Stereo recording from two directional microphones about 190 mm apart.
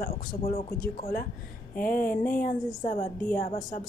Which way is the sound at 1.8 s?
50° left (ahead or behind).